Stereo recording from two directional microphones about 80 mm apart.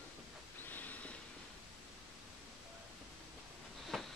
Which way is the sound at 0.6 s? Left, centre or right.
Left.